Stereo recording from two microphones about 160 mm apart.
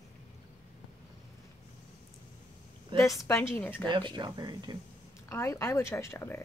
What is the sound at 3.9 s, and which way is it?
Speech, 30° right (ahead or behind).